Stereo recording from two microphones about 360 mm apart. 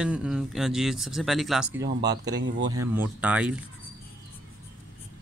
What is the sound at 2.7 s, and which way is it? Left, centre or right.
Speech, centre.